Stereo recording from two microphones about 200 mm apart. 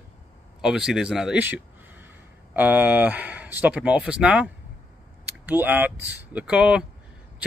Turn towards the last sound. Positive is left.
turn(degrees=-5)  # may be behind; listen again after turning